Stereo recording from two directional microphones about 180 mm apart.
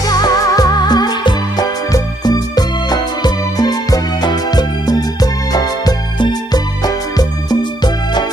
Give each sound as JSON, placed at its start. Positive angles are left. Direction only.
{"t": 0.0, "sound": "music", "side_deg": 20}